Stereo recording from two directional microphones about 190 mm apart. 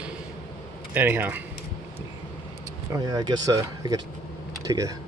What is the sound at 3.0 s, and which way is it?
Speech, 20° right (ahead or behind).